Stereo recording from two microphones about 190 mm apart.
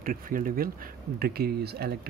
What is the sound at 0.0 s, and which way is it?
Speech, 45° right (ahead or behind).